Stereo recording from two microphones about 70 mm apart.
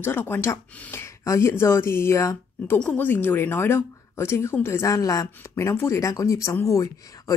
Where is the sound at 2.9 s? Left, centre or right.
Left.